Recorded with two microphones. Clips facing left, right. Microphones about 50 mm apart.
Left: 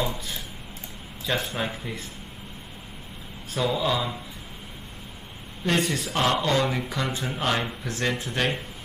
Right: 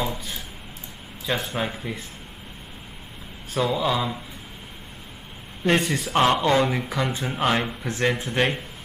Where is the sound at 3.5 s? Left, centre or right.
Centre.